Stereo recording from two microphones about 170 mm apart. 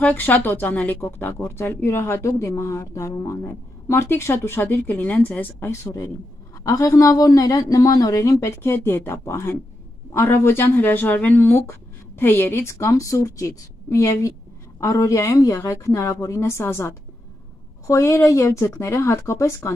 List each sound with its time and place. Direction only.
0.0 s speech: 10° left (ahead or behind)